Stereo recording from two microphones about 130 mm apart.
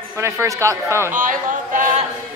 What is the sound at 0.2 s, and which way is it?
Speech, 20° right (ahead or behind).